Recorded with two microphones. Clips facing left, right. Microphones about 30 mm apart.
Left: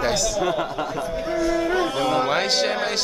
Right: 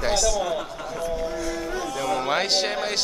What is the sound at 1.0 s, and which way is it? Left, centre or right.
Speech, left.